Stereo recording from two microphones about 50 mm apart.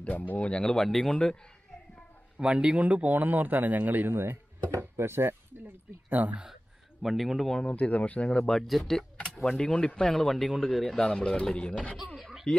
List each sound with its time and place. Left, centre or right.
0.4 s speech: centre
0.8 s a man's voice: centre
1.1 s speech: centre
2.3 s a man's voice: right
4.1 s speech: right
4.6 s speech: right
6.0 s a man's voice: right
7.0 s a man's voice: centre
7.6 s speech: left
8.6 s a man's voice: centre
9.6 s speech: centre
12.2 s a sound: centre